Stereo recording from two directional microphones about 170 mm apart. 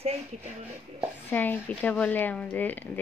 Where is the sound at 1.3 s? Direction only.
10° left (ahead or behind).